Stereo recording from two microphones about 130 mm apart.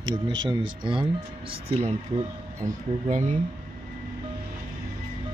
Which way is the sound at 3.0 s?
70° right (ahead or behind).